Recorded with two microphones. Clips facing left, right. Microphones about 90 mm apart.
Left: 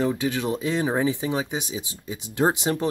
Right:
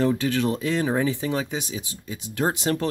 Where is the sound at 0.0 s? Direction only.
15° left (ahead or behind).